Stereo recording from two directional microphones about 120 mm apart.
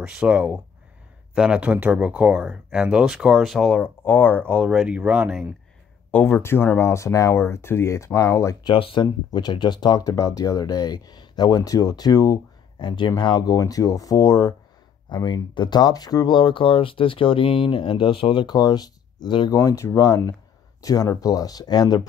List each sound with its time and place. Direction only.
0.0 s speech: 5° right (ahead or behind)
3.7 s speech: 20° left (ahead or behind)
4.6 s speech: 5° right (ahead or behind)
6.1 s speech: 20° left (ahead or behind)
8.6 s speech: 45° left (ahead or behind); by 14.5 s 30° left (ahead or behind)
15.0 s speech: 40° left (ahead or behind)
19.5 s speech: 25° left (ahead or behind)